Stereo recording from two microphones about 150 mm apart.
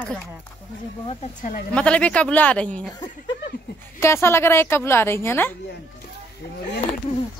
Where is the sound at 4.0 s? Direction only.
15° left (ahead or behind).